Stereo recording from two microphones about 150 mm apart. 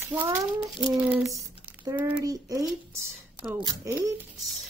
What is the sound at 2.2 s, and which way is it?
Speech, 25° right (ahead or behind).